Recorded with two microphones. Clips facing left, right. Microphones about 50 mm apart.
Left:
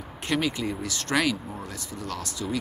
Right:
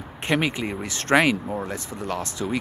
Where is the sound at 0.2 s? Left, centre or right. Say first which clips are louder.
Right 3 dB; right.